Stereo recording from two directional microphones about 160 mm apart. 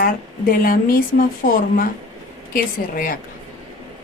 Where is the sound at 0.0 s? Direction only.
65° left (ahead or behind).